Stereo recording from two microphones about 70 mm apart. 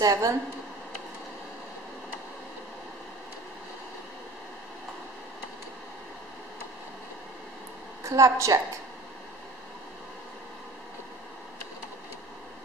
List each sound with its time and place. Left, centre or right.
0.0 s speech: right
8.0 s a woman's voice: right